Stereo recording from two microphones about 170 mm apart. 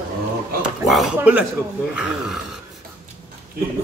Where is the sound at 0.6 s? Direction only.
5° right (ahead or behind).